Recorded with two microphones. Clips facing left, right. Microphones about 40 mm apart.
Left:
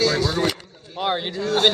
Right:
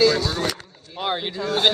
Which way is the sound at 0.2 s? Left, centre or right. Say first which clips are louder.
Left 3 dB; left.